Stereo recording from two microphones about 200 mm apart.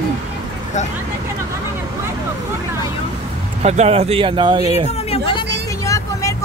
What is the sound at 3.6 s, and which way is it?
Speech, 35° right (ahead or behind).